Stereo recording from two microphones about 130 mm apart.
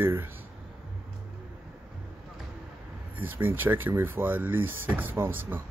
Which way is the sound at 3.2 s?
15° right (ahead or behind).